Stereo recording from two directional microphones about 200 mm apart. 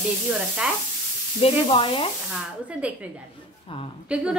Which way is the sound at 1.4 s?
30° left (ahead or behind).